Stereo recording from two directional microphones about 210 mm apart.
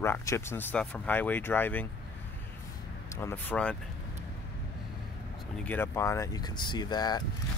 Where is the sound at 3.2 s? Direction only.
10° left (ahead or behind).